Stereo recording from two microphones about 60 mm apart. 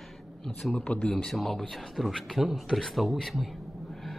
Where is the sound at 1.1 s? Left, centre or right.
Centre.